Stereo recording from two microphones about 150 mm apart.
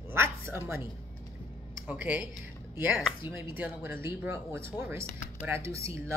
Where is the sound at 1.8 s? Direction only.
10° right (ahead or behind).